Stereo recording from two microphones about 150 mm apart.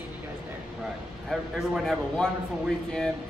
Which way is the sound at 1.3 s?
Centre (ahead or behind).